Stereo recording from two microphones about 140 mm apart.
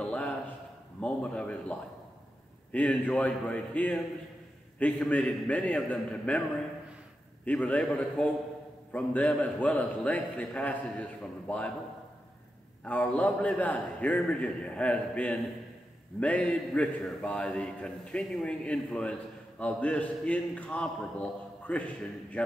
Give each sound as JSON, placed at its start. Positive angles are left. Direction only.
{"t": 0.0, "sound": "a sound", "side_deg": 10}
{"t": 1.0, "sound": "a man's voice", "side_deg": 10}
{"t": 7.4, "sound": "a man's voice", "side_deg": 10}
{"t": 12.8, "sound": "a man's voice", "side_deg": 10}